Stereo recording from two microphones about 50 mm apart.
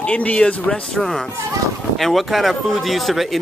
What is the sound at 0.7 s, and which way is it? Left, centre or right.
Speech, centre.